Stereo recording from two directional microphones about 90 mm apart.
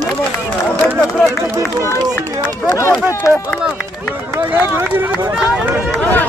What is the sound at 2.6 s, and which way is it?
Speech, 30° left (ahead or behind).